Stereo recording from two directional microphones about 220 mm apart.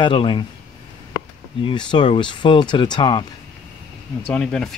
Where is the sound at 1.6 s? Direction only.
20° left (ahead or behind).